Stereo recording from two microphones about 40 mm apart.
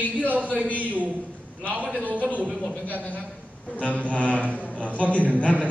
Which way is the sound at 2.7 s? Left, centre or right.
Left.